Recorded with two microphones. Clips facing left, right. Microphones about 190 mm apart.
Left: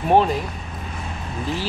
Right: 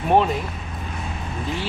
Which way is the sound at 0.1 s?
Centre (ahead or behind).